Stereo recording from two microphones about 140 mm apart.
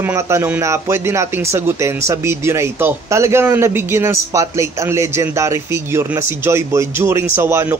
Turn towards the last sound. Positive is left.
turn(degrees=-20)  # may be behind; listen again after turning